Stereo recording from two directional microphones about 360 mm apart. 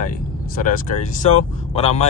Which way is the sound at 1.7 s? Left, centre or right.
Centre.